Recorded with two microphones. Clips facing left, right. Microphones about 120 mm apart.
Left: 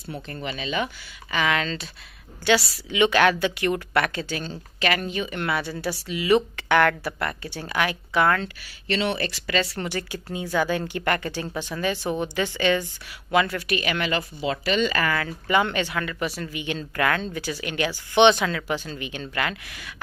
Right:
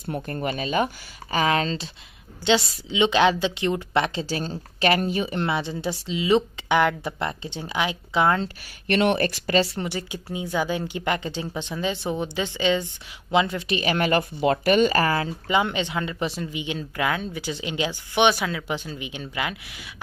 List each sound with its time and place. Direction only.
0.1 s a woman's voice: 50° right (ahead or behind)
2.4 s a woman's voice: 20° right (ahead or behind)
4.4 s a woman's voice: 40° right (ahead or behind); by 8.4 s 15° right (ahead or behind)
8.8 s speech: 55° right (ahead or behind)
9.8 s a woman's voice: 15° right (ahead or behind); by 15.3 s 30° right (ahead or behind)
15.4 s speech: 15° right (ahead or behind)